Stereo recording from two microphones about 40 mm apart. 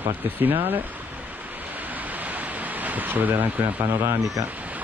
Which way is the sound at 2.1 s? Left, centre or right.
Right.